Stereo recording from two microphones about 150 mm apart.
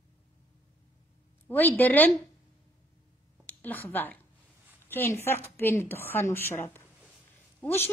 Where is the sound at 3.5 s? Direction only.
10° left (ahead or behind).